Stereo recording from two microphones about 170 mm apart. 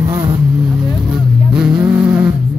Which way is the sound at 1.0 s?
5° right (ahead or behind).